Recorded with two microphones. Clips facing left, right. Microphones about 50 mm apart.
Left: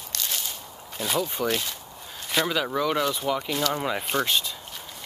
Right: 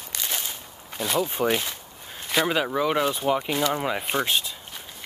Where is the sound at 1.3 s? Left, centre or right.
Right.